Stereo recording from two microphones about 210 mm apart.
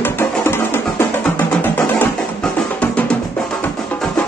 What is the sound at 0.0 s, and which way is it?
Music, 10° left (ahead or behind).